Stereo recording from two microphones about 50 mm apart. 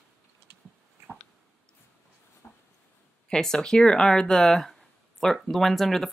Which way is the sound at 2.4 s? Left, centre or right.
Left.